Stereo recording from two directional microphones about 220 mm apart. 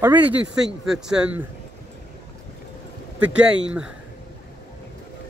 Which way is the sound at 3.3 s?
5° right (ahead or behind).